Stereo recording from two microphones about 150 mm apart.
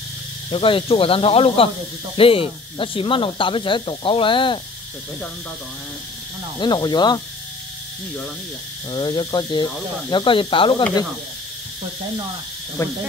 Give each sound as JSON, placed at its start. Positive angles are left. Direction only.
{"t": 0.5, "sound": "speech", "side_deg": 35}
{"t": 6.6, "sound": "speech", "side_deg": 30}
{"t": 8.9, "sound": "speech", "side_deg": 30}